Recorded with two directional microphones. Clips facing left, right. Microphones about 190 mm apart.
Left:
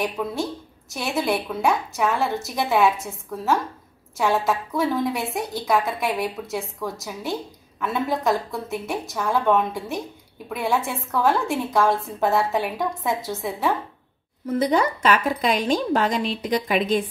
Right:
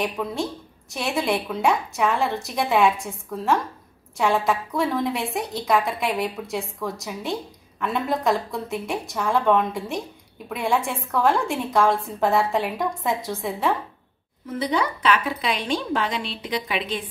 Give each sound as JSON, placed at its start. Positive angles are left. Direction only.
{"t": 0.0, "sound": "a woman's voice", "side_deg": 0}
{"t": 14.6, "sound": "a woman's voice", "side_deg": 45}